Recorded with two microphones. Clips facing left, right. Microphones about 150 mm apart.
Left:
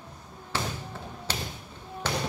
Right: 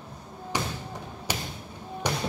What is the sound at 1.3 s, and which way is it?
Thump, 15° right (ahead or behind).